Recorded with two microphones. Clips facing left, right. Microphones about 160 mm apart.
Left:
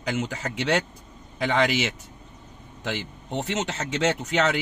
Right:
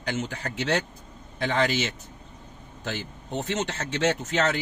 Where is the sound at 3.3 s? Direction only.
20° left (ahead or behind).